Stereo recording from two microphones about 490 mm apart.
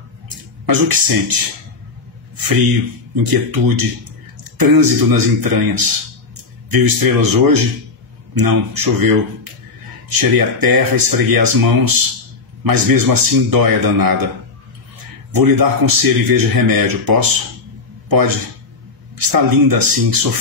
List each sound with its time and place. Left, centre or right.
0.7 s speech: right
2.4 s speech: right
15.3 s speech: right
19.1 s speech: right